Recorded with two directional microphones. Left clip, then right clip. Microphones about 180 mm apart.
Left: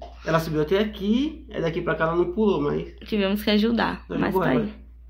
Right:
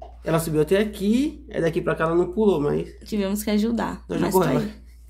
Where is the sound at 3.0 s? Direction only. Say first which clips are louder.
Left 2 dB; 10° right (ahead or behind).